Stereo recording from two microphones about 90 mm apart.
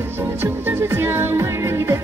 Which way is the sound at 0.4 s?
25° right (ahead or behind).